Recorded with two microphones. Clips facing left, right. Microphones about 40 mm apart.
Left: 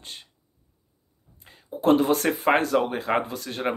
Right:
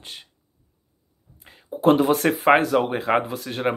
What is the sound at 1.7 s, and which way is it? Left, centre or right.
Speech, right.